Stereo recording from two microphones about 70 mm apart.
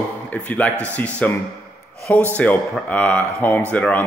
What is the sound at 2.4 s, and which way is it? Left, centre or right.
Speech, left.